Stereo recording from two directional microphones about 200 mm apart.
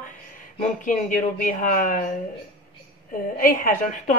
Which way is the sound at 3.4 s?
40° left (ahead or behind).